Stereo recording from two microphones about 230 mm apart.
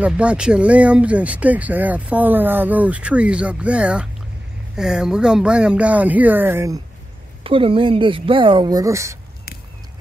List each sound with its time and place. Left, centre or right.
0.0 s speech: centre
7.4 s speech: right